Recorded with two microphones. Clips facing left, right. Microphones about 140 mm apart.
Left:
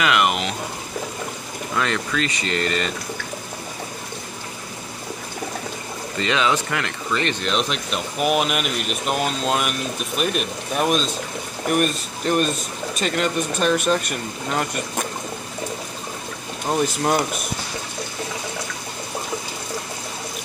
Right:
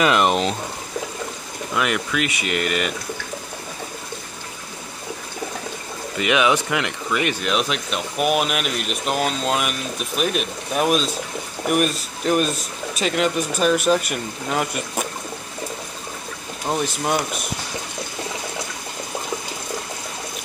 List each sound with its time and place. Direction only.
0.0 s speech: 35° right (ahead or behind)
1.8 s speech: 10° right (ahead or behind)
6.1 s speech: 15° right (ahead or behind)
16.6 s speech: centre (ahead or behind)